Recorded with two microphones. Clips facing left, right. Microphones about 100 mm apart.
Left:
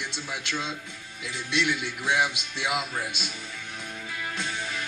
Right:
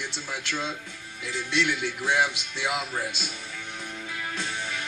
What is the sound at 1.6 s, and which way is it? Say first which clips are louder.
Speech: right 1 dB; 10° left (ahead or behind).